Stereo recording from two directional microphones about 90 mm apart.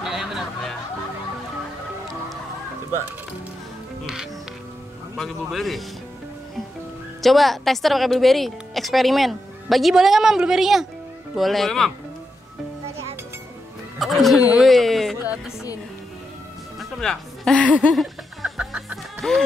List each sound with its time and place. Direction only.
0.0 s a sound: 5° right (ahead or behind)
4.0 s a woman's voice: 5° right (ahead or behind)
7.2 s a woman's voice: centre (ahead or behind)
13.9 s a woman's voice: centre (ahead or behind)
15.2 s speech: 10° right (ahead or behind)
16.9 s speech: 5° left (ahead or behind)
17.9 s music: 5° right (ahead or behind)